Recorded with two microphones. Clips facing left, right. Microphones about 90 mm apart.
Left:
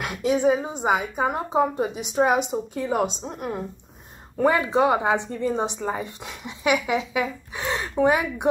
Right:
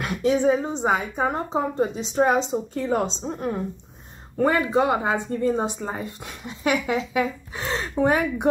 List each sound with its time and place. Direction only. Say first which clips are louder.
0.0 s a woman's voice: right 1 dB; 20° left (ahead or behind)
4.4 s speech: left 1 dB; 20° left (ahead or behind)